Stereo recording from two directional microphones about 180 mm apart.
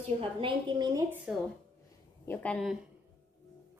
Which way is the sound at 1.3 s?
5° right (ahead or behind).